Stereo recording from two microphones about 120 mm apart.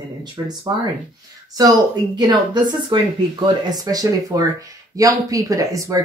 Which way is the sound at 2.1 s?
35° right (ahead or behind).